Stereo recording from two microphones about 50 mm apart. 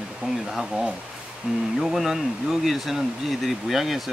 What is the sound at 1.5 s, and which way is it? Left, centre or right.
Speech, centre.